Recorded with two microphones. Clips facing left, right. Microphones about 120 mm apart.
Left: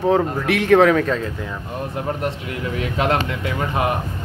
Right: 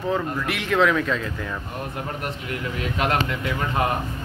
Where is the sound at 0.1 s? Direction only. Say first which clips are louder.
Left 5 dB; 55° left (ahead or behind).